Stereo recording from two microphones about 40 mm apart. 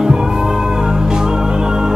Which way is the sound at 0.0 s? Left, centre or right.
Centre.